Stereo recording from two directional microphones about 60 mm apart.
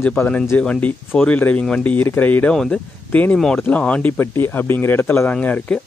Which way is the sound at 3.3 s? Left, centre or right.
Centre.